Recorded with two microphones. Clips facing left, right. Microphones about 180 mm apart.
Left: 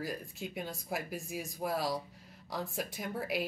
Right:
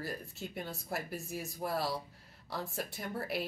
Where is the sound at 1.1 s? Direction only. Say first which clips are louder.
Left 1 dB; centre (ahead or behind).